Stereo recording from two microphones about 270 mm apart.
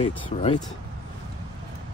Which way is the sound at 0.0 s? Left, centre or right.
Left.